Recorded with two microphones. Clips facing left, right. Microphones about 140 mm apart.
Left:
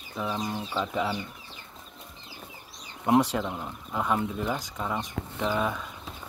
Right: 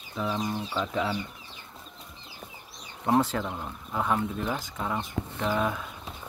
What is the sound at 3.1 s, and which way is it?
Speech, 10° left (ahead or behind).